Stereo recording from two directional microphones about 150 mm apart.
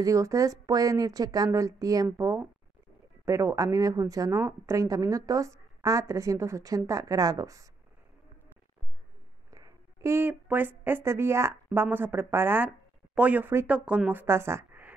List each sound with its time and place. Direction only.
0.0 s a woman's voice: 20° right (ahead or behind)
9.5 s a woman's voice: 20° right (ahead or behind)